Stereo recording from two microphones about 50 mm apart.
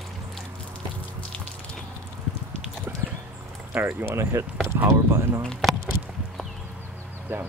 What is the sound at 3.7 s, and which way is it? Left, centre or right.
Speech, right.